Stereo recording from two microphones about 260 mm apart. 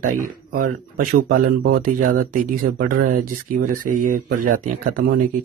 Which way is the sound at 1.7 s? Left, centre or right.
Right.